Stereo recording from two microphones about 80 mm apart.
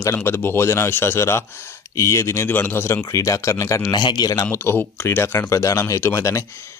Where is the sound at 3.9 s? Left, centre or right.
Left.